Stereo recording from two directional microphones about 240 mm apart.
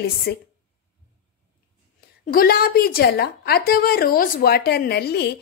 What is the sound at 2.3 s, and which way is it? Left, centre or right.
A woman's voice, left.